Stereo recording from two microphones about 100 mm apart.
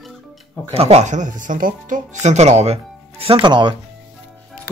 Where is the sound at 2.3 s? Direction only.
90° right.